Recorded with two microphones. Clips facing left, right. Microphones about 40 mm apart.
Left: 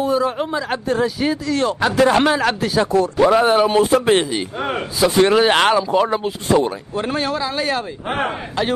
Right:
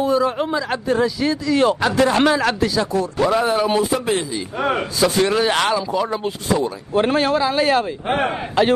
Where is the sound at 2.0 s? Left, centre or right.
Centre.